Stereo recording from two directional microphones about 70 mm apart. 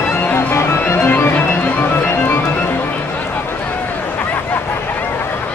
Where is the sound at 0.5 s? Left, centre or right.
Left.